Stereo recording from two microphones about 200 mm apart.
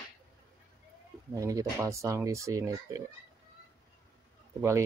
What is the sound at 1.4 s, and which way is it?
Speech, 15° right (ahead or behind).